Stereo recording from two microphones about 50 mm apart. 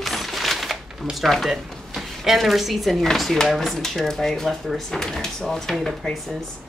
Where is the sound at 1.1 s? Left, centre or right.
Centre.